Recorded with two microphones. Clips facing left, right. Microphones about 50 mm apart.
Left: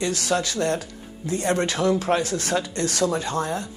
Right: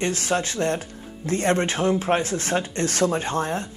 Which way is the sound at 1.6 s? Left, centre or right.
Right.